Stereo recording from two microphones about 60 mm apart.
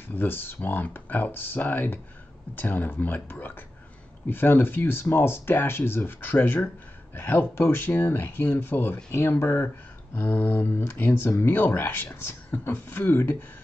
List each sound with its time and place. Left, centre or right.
0.1 s speech: left